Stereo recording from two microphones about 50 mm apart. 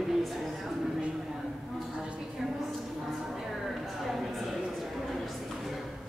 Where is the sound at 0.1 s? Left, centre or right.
Centre.